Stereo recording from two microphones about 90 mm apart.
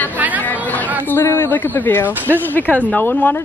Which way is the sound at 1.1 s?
25° left (ahead or behind).